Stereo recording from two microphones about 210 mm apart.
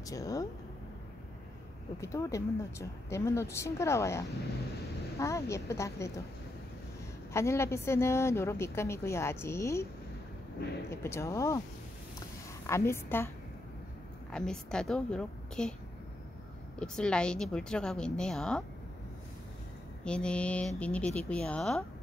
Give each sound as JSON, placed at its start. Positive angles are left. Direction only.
{"t": 0.0, "sound": "a woman's voice", "side_deg": 15}
{"t": 2.0, "sound": "a woman's voice", "side_deg": 15}
{"t": 7.3, "sound": "a woman's voice", "side_deg": 15}
{"t": 10.9, "sound": "a woman's voice", "side_deg": 15}
{"t": 12.6, "sound": "a woman's voice", "side_deg": 10}
{"t": 14.3, "sound": "a woman's voice", "side_deg": 5}
{"t": 16.8, "sound": "a woman's voice", "side_deg": 5}
{"t": 20.1, "sound": "a woman's voice", "side_deg": 5}